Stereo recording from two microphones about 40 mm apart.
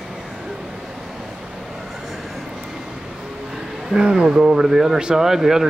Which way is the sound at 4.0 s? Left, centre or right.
Right.